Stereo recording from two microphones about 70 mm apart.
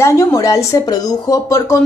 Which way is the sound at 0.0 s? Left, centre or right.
Left.